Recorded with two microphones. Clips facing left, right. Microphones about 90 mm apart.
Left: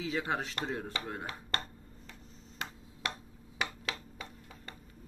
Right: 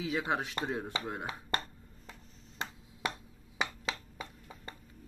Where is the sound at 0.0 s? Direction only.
15° right (ahead or behind).